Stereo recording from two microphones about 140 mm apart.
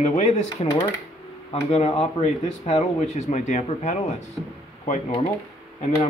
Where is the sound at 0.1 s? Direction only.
50° left (ahead or behind).